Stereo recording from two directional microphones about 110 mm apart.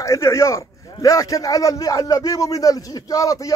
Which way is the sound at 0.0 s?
25° left (ahead or behind).